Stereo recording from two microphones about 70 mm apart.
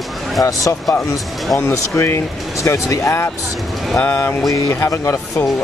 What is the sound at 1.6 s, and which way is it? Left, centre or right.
Speech, left.